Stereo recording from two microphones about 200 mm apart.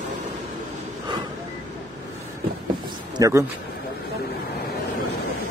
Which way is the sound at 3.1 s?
15° right (ahead or behind).